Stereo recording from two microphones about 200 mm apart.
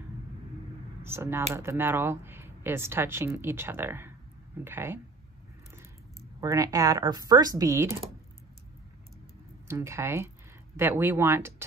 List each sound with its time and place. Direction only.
1.0 s speech: 10° right (ahead or behind)
6.4 s speech: 15° right (ahead or behind)
9.7 s speech: 15° right (ahead or behind)